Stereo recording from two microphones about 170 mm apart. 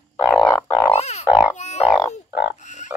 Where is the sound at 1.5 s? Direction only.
40° left (ahead or behind).